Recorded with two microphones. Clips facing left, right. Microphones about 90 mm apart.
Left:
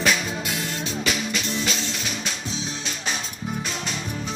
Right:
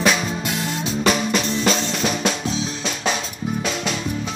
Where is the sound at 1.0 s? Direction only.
50° right (ahead or behind); by 2.3 s 65° right (ahead or behind).